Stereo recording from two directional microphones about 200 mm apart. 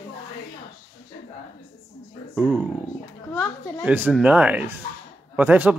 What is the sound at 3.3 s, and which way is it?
Speech, 10° left (ahead or behind).